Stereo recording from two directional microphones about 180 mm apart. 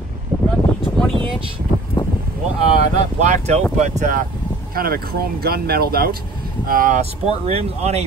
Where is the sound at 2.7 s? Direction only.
40° right (ahead or behind).